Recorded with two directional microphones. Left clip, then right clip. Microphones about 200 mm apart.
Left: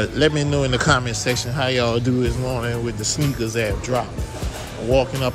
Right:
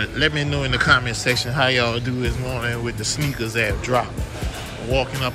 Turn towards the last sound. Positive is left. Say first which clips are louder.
# left 3 dB
turn(degrees=15)  # may be behind; listen again after turning